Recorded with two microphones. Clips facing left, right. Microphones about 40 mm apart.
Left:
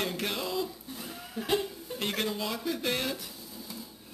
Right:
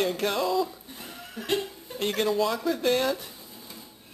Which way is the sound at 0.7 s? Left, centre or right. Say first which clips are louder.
Even; right.